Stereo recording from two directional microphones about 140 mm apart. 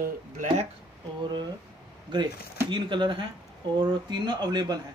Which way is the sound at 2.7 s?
35° right (ahead or behind).